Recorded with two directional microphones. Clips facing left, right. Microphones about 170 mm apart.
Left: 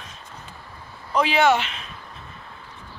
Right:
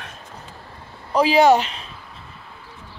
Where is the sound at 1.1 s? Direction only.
35° right (ahead or behind).